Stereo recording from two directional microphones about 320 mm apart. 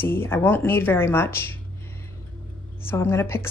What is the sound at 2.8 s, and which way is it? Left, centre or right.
Speech, centre.